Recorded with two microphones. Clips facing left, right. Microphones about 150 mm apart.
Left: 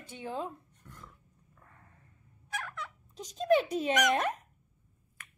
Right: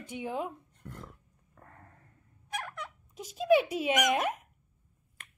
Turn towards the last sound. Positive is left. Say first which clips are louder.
# even
turn(degrees=-10)  # may be behind; listen again after turning